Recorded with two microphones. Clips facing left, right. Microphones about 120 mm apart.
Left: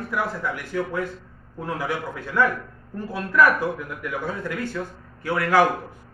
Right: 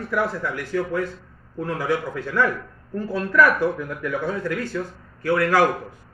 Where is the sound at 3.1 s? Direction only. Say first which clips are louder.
Right 1 dB; 15° left (ahead or behind).